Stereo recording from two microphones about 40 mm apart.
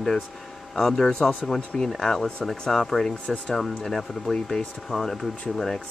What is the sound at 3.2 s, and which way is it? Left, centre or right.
Speech, left.